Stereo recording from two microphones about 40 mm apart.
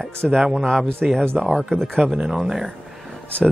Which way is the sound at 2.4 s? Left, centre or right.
Centre.